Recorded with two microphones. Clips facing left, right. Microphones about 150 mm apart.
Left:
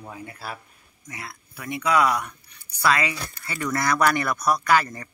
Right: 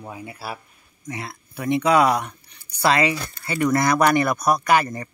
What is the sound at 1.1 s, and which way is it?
Speech, 25° right (ahead or behind).